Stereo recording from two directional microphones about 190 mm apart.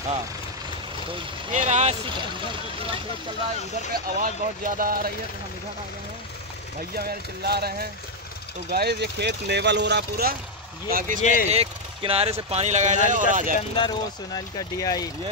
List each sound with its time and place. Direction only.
1.5 s speech: 35° right (ahead or behind)
3.9 s speech: 45° right (ahead or behind)
7.0 s speech: 55° right (ahead or behind)
10.9 s speech: 45° right (ahead or behind)
11.1 s speech: 40° left (ahead or behind)
11.4 s speech: 30° right (ahead or behind)
13.6 s speech: 25° left (ahead or behind)